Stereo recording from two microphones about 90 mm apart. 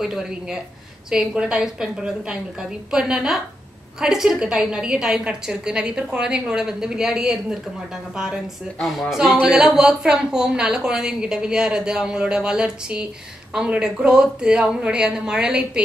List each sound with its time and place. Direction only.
0.0 s a woman's voice: 5° right (ahead or behind)
8.8 s a woman's voice: centre (ahead or behind)